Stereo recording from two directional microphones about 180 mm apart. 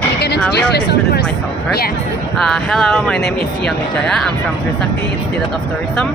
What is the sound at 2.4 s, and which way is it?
Speech, centre (ahead or behind).